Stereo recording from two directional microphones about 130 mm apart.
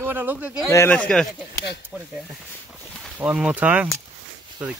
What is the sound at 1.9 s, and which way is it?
Speech, 5° right (ahead or behind).